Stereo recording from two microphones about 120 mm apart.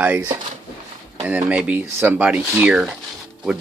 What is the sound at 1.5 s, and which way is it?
Speech, 10° right (ahead or behind).